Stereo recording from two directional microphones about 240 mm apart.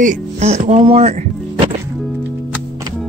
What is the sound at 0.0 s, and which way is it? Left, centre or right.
Speech, right.